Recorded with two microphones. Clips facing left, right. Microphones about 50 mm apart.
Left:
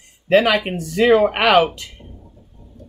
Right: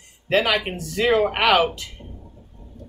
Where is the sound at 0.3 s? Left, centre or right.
Centre.